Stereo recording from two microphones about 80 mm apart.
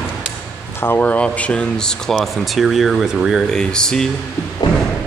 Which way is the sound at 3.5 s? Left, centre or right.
Centre.